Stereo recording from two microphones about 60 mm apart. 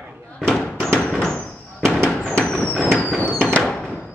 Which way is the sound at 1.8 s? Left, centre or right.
Centre.